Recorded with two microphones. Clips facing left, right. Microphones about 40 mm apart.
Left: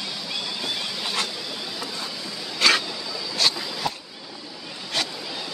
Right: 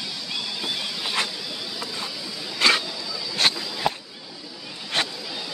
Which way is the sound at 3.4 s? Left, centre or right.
Right.